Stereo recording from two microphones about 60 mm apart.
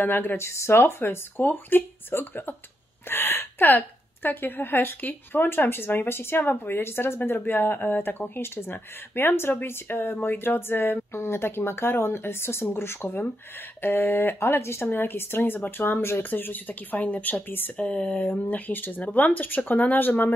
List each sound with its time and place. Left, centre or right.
0.0 s a woman's voice: left